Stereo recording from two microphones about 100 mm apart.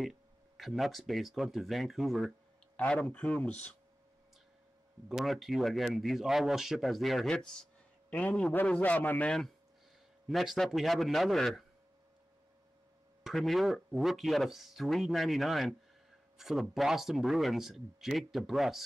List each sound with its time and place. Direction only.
0.0 s speech: centre (ahead or behind)
2.8 s a man's voice: 15° left (ahead or behind)
5.0 s a man's voice: centre (ahead or behind); by 9.3 s 15° left (ahead or behind)
10.2 s speech: centre (ahead or behind)
13.2 s speech: centre (ahead or behind)